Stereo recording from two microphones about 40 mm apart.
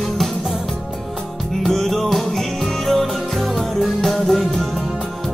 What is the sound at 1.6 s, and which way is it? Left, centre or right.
Music, centre.